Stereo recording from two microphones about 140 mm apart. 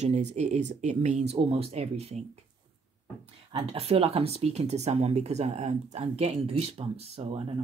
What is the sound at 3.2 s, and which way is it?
Speech, 40° right (ahead or behind).